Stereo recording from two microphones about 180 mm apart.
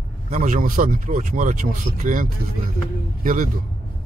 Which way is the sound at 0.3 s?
50° right (ahead or behind).